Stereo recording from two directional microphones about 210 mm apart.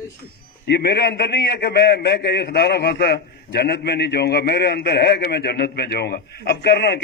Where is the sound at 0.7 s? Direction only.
50° left (ahead or behind).